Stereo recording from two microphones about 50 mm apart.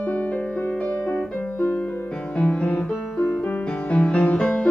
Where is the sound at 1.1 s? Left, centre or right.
Left.